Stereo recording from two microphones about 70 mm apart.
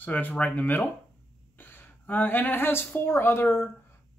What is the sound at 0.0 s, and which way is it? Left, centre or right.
A woman's voice, left.